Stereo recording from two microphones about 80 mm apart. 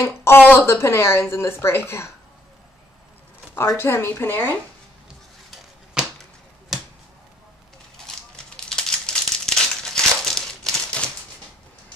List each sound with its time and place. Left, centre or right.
0.2 s speech: left
3.5 s a woman's voice: left
8.5 s crumpling: centre